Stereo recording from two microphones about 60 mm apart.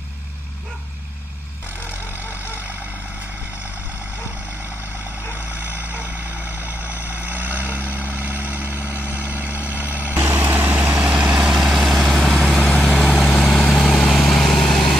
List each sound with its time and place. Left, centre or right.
7.2 s vehicle: right
7.8 s vehicle: left
8.5 s vehicle: right; by 15.0 s centre